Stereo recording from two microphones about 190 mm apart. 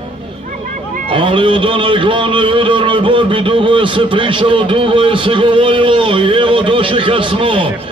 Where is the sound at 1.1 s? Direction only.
25° right (ahead or behind).